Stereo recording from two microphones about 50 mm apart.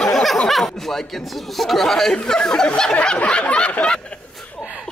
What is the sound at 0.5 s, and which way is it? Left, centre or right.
Speech, centre.